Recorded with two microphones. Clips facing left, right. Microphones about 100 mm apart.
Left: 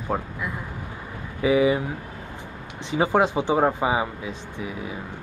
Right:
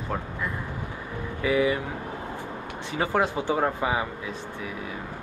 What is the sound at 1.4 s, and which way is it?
Speech, 20° left (ahead or behind).